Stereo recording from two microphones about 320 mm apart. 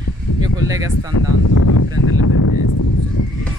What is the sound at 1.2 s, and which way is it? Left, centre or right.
Speech, left.